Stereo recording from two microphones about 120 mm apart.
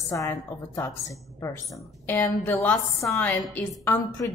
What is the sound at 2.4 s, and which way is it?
Speech, 15° left (ahead or behind).